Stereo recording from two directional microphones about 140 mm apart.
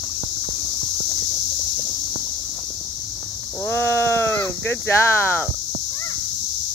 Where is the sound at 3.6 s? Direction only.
15° left (ahead or behind).